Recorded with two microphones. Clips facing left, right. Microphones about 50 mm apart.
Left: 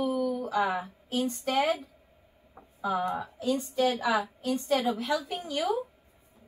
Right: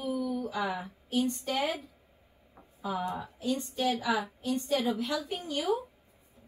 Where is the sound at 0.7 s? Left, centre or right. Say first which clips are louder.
Left 2 dB; left.